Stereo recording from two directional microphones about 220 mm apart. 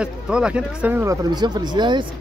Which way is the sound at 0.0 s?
5° right (ahead or behind).